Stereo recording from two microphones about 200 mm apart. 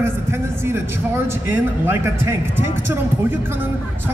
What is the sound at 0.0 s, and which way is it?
A man's voice, 10° right (ahead or behind).